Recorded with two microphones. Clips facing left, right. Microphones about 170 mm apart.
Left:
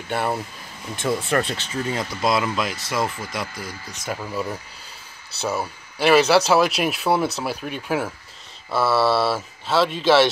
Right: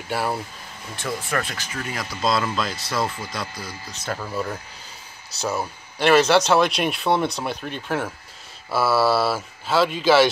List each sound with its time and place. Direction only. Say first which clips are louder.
0.1 s speech: left 1 dB; 5° right (ahead or behind)
1.0 s speech: left 5 dB; 30° left (ahead or behind)
2.3 s speech: left 1 dB; 15° left (ahead or behind)
4.1 s speech: even; 10° left (ahead or behind)